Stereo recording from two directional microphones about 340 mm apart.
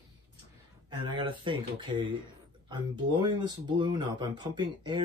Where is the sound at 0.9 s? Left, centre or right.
Centre.